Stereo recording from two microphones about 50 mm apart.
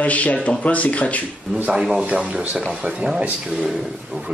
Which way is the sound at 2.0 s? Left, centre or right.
Right.